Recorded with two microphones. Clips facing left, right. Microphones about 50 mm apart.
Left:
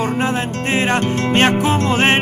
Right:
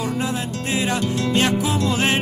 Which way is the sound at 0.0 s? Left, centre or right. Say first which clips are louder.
Left 5 dB; left.